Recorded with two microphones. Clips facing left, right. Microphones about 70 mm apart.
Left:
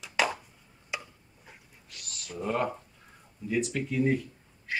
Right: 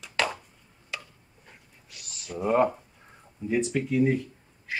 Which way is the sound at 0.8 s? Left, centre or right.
Centre.